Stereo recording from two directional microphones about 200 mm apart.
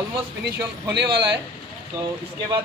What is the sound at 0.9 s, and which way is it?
Speech, 55° right (ahead or behind).